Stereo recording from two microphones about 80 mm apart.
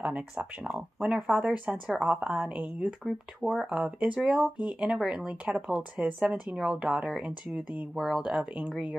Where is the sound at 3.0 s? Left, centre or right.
Centre.